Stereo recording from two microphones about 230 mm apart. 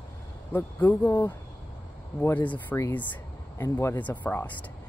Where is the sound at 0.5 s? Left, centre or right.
Centre.